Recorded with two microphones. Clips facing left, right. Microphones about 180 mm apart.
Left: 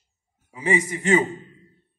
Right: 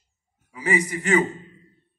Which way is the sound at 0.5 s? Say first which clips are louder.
Left 1 dB; 25° left (ahead or behind).